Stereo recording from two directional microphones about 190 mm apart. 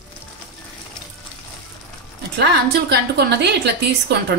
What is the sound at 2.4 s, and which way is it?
A woman's voice, 60° right (ahead or behind).